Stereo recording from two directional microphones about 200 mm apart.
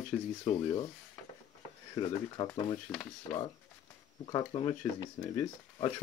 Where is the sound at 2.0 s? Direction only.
25° left (ahead or behind).